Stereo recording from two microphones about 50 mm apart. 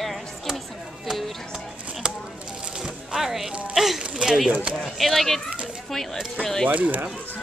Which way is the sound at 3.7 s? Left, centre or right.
Centre.